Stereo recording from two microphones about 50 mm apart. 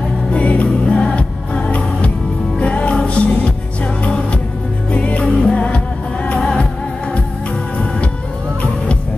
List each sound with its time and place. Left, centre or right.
0.3 s music: left